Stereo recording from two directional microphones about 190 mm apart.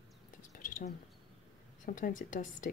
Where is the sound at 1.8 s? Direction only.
45° left (ahead or behind).